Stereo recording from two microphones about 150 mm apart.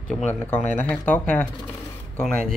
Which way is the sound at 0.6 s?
55° left (ahead or behind).